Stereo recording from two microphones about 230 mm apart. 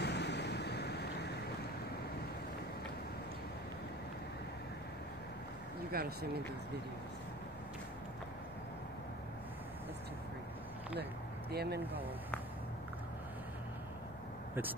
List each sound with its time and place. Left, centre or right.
0.0 s waves: left
5.9 s speech: right
11.5 s speech: right